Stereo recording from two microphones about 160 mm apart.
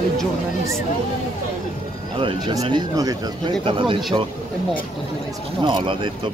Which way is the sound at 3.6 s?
35° right (ahead or behind).